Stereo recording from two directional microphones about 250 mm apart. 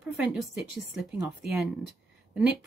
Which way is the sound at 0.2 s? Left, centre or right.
Centre.